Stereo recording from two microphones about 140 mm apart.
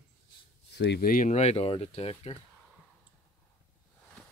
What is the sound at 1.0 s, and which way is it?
Speech, 90° left.